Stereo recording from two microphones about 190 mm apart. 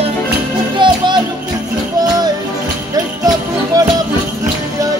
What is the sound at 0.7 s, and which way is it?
Music, 25° right (ahead or behind).